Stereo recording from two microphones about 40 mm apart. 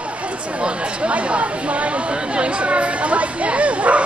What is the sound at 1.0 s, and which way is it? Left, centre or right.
Chatter, right.